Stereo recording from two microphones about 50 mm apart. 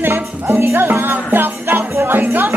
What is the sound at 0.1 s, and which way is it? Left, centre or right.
Music, right.